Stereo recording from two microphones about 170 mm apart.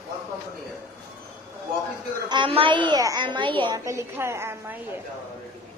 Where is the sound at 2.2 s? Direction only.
30° right (ahead or behind).